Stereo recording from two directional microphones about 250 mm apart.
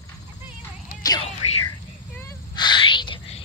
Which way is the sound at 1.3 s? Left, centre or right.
Left.